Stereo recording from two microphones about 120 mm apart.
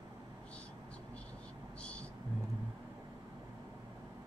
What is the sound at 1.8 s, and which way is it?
Vehicle, 10° left (ahead or behind).